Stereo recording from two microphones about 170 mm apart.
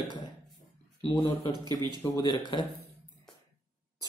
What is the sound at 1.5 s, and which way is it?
Speech, 25° right (ahead or behind).